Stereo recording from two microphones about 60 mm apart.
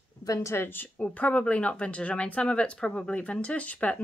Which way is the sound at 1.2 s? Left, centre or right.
Left.